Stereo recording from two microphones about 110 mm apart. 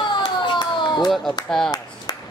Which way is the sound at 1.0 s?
Centre (ahead or behind).